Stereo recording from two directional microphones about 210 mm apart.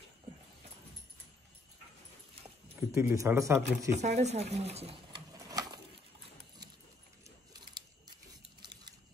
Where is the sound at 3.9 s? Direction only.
35° right (ahead or behind).